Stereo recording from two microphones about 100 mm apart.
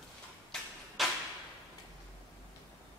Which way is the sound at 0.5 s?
5° left (ahead or behind).